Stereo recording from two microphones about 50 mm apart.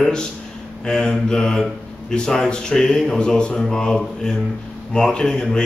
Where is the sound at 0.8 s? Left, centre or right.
Centre.